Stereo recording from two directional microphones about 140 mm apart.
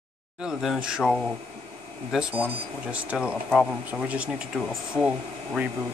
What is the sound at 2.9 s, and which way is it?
Speech, 10° right (ahead or behind).